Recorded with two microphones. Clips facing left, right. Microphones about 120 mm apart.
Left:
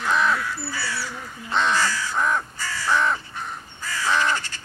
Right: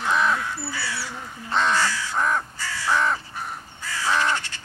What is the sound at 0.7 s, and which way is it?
Crow, 40° left (ahead or behind).